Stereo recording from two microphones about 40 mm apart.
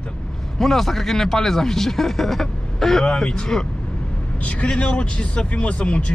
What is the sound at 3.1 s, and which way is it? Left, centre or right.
Speech, left.